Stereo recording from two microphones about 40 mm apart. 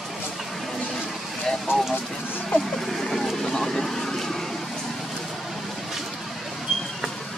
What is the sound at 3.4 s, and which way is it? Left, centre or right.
Vehicle, centre.